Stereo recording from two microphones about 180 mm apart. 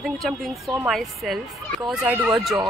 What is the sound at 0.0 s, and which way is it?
Speech, centre (ahead or behind).